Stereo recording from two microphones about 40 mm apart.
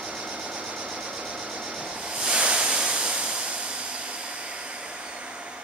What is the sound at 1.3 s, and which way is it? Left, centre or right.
Waves, centre.